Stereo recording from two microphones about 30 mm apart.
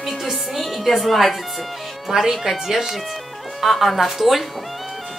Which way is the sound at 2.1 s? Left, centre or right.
Centre.